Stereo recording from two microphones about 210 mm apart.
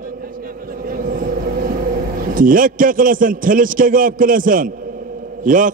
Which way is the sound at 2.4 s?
40° right (ahead or behind).